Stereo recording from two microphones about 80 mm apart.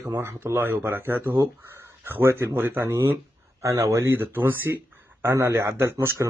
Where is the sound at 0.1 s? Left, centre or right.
Right.